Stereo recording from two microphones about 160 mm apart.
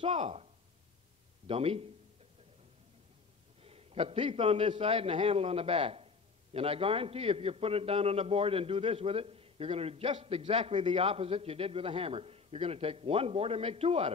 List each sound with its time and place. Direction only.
0.0 s a man's voice: 40° right (ahead or behind)
1.5 s a man's voice: 40° right (ahead or behind)
3.6 s a man's voice: 40° right (ahead or behind)